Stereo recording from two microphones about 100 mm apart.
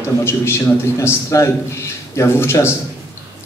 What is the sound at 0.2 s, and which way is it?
A man's voice, 25° left (ahead or behind).